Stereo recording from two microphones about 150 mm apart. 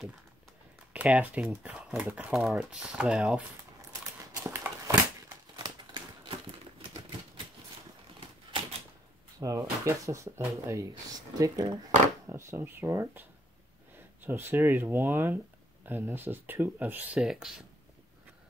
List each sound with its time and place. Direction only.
0.9 s speech: 10° right (ahead or behind)
3.9 s a sound: 20° right (ahead or behind)
9.4 s speech: 20° right (ahead or behind); by 17.5 s 5° right (ahead or behind)